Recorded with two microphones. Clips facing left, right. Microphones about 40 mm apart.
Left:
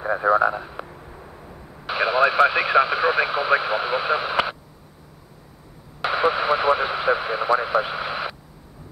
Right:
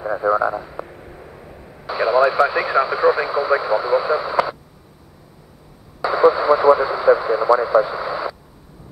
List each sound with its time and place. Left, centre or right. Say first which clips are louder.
0.0 s a man's voice: even; left
0.8 s a sound: right 3 dB; centre
1.9 s speech: right 3 dB; left
5.9 s radio: right 6 dB; left